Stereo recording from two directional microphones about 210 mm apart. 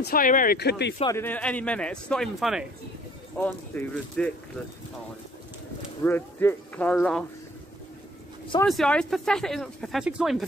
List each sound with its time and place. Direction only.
0.0 s speech: 40° left (ahead or behind)
1.1 s speech: 10° left (ahead or behind)
6.0 s speech: 10° left (ahead or behind)
8.6 s speech: 5° left (ahead or behind)